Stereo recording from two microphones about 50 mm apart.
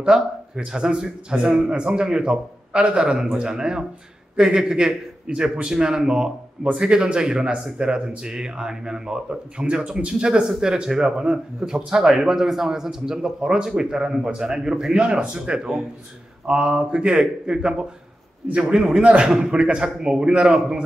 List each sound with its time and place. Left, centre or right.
0.1 s speech: centre